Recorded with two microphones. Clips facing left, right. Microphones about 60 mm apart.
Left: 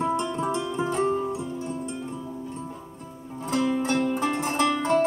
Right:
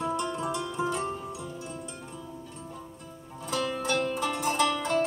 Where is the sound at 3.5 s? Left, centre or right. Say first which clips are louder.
Left 4 dB; left.